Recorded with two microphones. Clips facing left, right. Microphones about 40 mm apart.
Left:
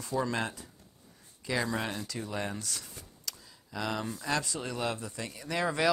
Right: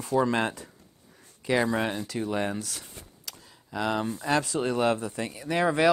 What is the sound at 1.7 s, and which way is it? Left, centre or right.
Speech, right.